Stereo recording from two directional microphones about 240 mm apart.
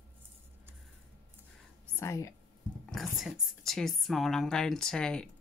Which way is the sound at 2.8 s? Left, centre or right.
Centre.